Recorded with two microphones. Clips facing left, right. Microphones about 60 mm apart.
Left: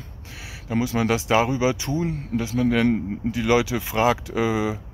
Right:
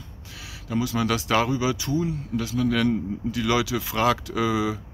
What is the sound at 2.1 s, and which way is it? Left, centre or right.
Speech, left.